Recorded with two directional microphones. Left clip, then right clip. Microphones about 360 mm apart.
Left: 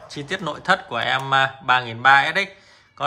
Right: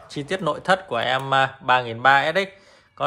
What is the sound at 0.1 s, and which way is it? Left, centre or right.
Speech, centre.